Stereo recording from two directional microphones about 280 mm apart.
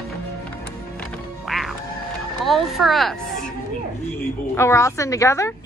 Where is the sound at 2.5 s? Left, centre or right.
Centre.